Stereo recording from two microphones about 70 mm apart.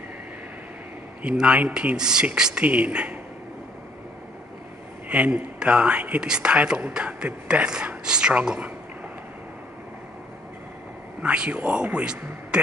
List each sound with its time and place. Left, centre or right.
1.2 s speech: centre
5.0 s speech: right
11.2 s speech: centre